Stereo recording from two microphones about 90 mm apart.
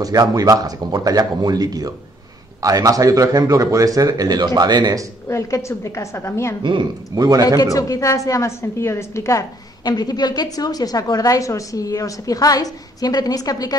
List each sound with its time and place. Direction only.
0.0 s speech: 45° right (ahead or behind)
5.3 s a woman's voice: 30° left (ahead or behind)
7.2 s speech: 45° right (ahead or behind)
7.6 s a woman's voice: 40° left (ahead or behind)
9.8 s a woman's voice: 50° left (ahead or behind)